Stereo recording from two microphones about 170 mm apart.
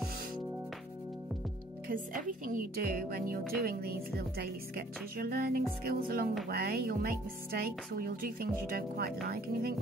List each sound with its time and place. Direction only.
1.9 s speech: 55° right (ahead or behind)